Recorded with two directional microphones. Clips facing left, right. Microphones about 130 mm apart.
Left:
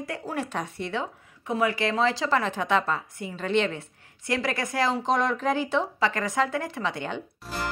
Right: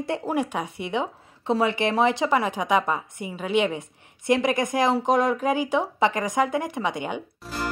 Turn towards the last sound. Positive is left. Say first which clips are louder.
# right 1 dB
turn(degrees=0)  # may be behind; listen again after turning